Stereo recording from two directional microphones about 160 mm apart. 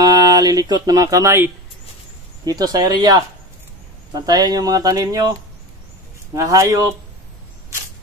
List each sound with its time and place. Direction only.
0.0 s music: 25° right (ahead or behind)
2.4 s speech: 25° right (ahead or behind)
6.3 s speech: 20° right (ahead or behind)